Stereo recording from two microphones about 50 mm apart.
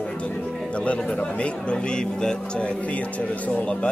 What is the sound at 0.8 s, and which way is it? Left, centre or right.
A man's voice, left.